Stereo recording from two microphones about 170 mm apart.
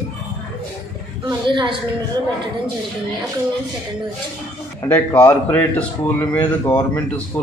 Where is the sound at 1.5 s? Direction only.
30° right (ahead or behind).